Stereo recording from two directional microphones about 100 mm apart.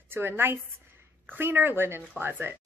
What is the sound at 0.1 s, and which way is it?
Speech, 25° right (ahead or behind).